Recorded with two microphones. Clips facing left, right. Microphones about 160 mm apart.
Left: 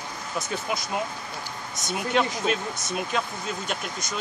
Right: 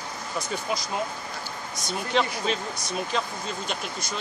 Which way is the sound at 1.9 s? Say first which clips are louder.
Left 1 dB; 5° left (ahead or behind).